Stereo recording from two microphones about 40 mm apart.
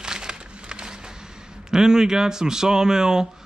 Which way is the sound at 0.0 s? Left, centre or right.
Centre.